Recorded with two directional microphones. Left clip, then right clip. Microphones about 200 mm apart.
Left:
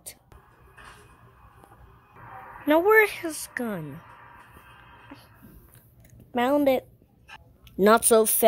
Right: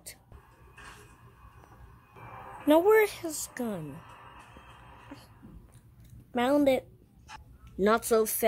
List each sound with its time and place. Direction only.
2.6 s a woman's voice: centre (ahead or behind)
6.3 s a woman's voice: 5° left (ahead or behind)
7.7 s speech: 25° left (ahead or behind)